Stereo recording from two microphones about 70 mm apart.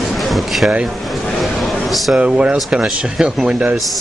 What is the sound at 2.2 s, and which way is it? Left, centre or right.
Speech, centre.